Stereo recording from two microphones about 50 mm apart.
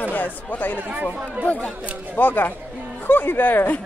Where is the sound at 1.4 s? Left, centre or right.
Left.